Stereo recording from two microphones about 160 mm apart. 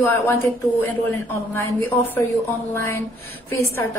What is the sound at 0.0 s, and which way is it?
Speech, 15° left (ahead or behind).